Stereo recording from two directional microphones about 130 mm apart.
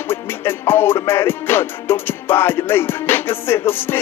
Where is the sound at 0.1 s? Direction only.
20° left (ahead or behind).